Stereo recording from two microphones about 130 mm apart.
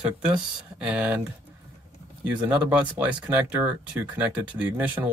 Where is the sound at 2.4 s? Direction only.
15° right (ahead or behind).